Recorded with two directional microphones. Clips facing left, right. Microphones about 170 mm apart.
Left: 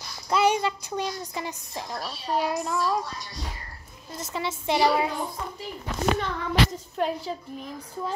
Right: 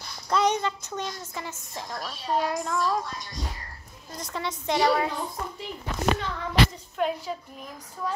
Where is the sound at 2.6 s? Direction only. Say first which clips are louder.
Even; 5° left (ahead or behind).